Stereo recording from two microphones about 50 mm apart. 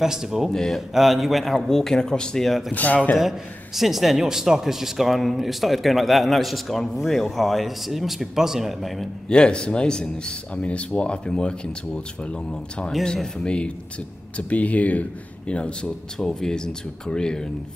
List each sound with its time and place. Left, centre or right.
0.0 s speech: centre
0.5 s a man's voice: centre
2.7 s speech: left
3.2 s a man's voice: centre
9.3 s a man's voice: centre
10.5 s a man's voice: left
16.2 s a man's voice: centre